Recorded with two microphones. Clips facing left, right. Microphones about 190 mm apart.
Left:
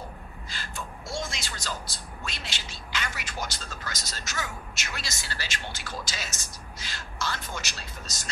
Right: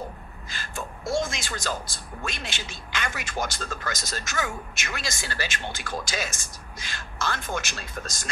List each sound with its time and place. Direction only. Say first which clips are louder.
0.5 s gasp: right 4 dB; 45° right (ahead or behind)
1.1 s speech: right 7 dB; 50° right (ahead or behind)